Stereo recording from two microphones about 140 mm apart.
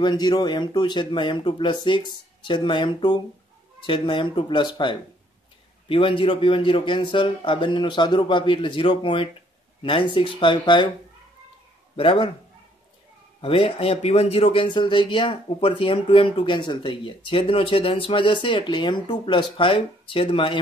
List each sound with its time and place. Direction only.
0.0 s a man's voice: 30° left (ahead or behind)
12.0 s a man's voice: 40° left (ahead or behind)
13.4 s a man's voice: 40° left (ahead or behind)